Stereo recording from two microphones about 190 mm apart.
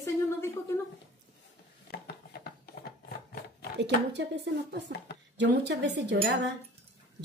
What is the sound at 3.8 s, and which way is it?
A woman's voice, 65° right (ahead or behind).